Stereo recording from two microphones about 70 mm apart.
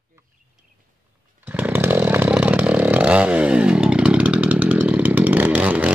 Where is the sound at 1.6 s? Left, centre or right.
Right.